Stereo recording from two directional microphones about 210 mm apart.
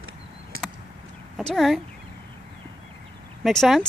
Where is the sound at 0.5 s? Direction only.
75° right (ahead or behind).